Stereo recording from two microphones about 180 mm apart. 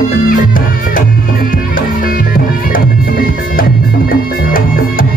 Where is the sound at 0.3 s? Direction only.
50° left (ahead or behind).